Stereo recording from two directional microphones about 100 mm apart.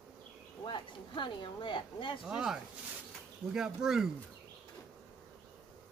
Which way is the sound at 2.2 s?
5° right (ahead or behind).